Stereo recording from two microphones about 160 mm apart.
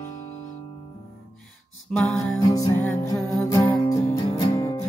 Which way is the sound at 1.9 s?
5° left (ahead or behind).